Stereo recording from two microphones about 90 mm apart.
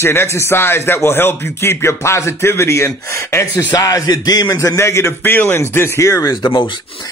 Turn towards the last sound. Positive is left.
turn(degrees=60)  # may be behind; listen again after turning